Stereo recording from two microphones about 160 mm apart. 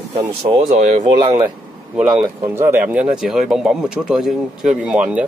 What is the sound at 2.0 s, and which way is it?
Speech, 5° right (ahead or behind).